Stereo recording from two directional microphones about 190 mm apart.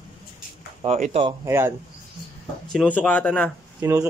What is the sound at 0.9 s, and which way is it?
Speech, 45° right (ahead or behind).